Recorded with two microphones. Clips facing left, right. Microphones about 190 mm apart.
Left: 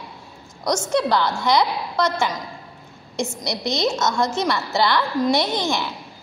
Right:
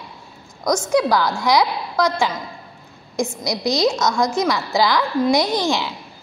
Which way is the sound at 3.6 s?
25° left (ahead or behind).